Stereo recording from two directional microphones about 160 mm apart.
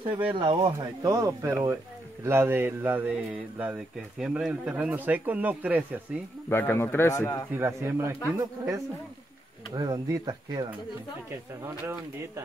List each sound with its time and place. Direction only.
0.4 s speech: 30° right (ahead or behind); by 5.9 s 10° right (ahead or behind)
6.5 s speech: 15° left (ahead or behind)
7.5 s speech: 15° right (ahead or behind)